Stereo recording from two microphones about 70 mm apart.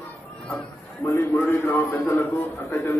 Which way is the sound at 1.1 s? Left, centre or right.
Left.